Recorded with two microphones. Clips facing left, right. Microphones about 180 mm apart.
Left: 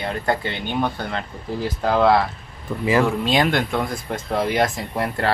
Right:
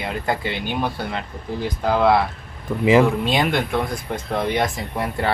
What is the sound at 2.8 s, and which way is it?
Speech, 20° right (ahead or behind).